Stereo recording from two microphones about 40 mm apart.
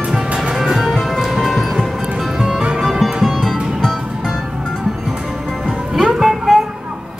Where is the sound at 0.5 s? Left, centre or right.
Centre.